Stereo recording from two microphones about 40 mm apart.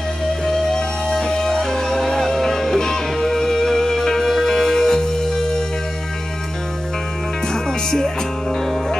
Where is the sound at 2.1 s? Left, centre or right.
Centre.